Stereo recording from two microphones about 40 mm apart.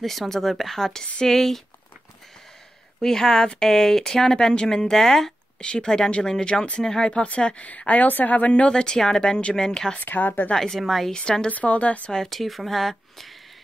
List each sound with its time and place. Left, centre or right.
0.0 s speech: centre
3.0 s speech: centre
5.6 s speech: left
7.2 s speech: left
7.7 s speech: left
8.6 s speech: left
9.9 s speech: left
10.5 s speech: centre
10.8 s speech: centre
11.1 s speech: centre
11.4 s speech: left
12.1 s speech: centre